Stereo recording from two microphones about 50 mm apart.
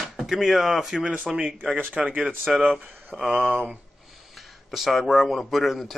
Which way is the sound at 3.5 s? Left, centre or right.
Right.